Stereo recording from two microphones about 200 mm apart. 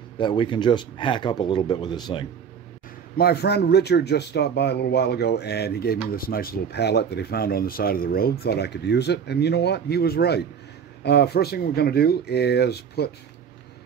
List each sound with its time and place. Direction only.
0.2 s speech: 25° left (ahead or behind)
3.2 s speech: 50° left (ahead or behind)